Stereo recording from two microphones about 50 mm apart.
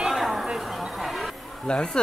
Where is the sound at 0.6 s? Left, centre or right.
Centre.